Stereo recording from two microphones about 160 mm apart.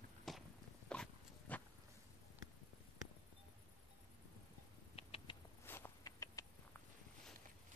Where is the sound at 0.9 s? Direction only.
5° left (ahead or behind).